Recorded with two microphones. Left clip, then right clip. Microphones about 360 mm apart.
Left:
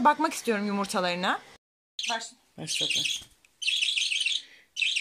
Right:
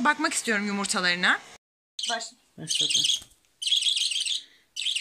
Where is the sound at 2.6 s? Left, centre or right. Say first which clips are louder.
Right 3 dB; centre.